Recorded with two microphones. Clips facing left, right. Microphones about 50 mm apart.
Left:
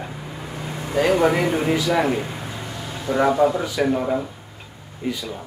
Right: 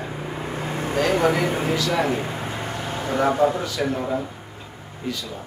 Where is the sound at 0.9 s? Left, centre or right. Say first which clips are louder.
Left 3 dB; centre.